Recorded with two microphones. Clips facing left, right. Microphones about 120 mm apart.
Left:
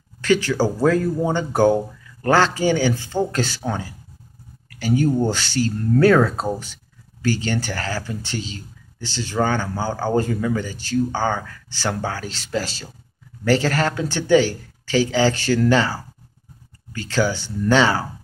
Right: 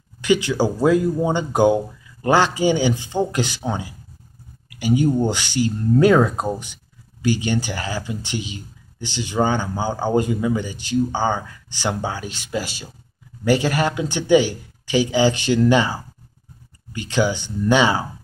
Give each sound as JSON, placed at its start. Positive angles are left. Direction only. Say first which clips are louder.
{"t": 0.2, "sound": "speech", "louder": "even", "side_deg": -15}